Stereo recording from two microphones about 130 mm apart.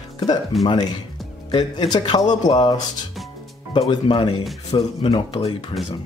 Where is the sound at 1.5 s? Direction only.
35° left (ahead or behind).